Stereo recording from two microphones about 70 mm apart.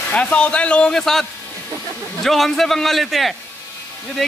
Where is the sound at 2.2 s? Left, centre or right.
Centre.